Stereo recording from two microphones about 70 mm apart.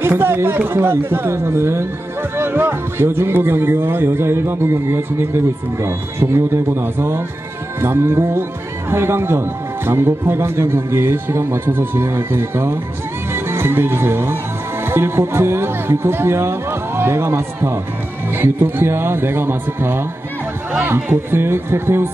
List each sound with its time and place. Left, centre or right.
0.0 s speech: right